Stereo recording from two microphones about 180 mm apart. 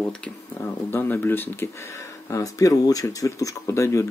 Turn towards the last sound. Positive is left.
turn(degrees=15)  # may be behind; listen again after turning